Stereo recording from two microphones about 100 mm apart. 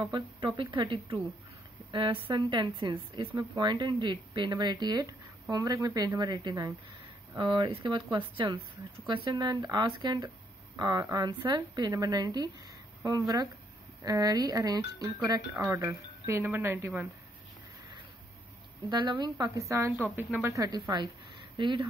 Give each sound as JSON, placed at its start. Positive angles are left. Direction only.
{"t": 0.1, "sound": "speech", "side_deg": -50}
{"t": 9.0, "sound": "speech", "side_deg": -50}
{"t": 14.0, "sound": "speech", "side_deg": -40}
{"t": 18.9, "sound": "speech", "side_deg": -45}
{"t": 19.9, "sound": "speech", "side_deg": -15}
{"t": 20.4, "sound": "speech", "side_deg": -35}
{"t": 21.5, "sound": "speech", "side_deg": -50}